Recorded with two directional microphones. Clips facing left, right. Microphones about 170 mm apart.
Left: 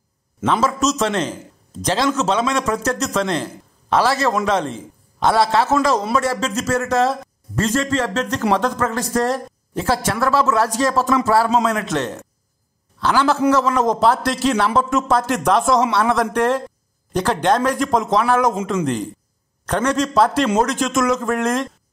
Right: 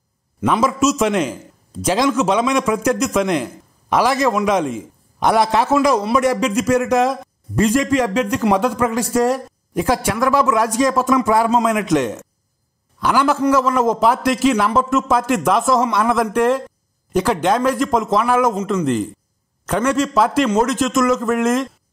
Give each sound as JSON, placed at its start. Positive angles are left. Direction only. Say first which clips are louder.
{"t": 0.5, "sound": "a man's voice", "louder": "right 2 dB", "side_deg": -10}
{"t": 19.6, "sound": "a man's voice", "louder": "right 1 dB", "side_deg": -5}